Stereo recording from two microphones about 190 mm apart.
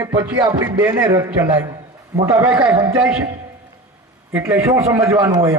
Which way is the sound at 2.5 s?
5° right (ahead or behind).